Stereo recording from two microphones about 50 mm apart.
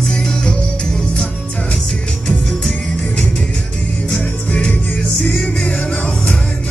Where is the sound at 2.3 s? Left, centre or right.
Centre.